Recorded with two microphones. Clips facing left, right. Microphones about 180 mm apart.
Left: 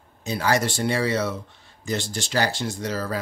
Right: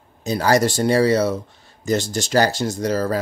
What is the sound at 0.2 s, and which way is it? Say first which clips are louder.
Speech: right 6 dB; 40° right (ahead or behind).